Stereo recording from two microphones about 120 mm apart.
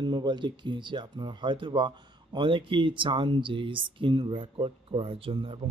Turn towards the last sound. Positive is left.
turn(degrees=-45)  # may be behind; listen again after turning